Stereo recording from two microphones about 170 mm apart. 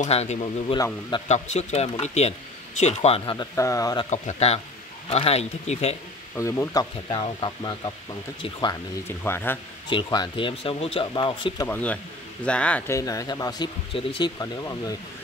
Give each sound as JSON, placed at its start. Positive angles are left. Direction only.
{"t": 0.0, "sound": "speech", "side_deg": 40}
{"t": 3.5, "sound": "speech", "side_deg": 20}
{"t": 4.1, "sound": "speech", "side_deg": 40}
{"t": 6.3, "sound": "speech", "side_deg": 15}
{"t": 9.0, "sound": "speech", "side_deg": 15}
{"t": 9.8, "sound": "speech", "side_deg": 25}
{"t": 11.6, "sound": "speech", "side_deg": 10}